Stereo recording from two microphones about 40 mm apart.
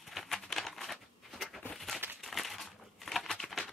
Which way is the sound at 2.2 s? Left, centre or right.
Centre.